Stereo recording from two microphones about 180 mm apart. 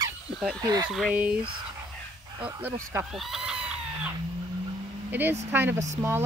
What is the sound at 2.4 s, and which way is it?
Speech, 10° right (ahead or behind).